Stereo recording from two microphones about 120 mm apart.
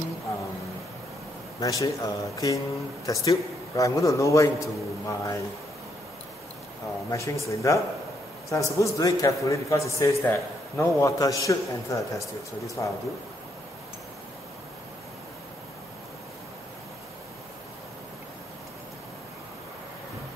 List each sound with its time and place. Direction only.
1.6 s a man's voice: 30° left (ahead or behind)
7.1 s a man's voice: 25° left (ahead or behind)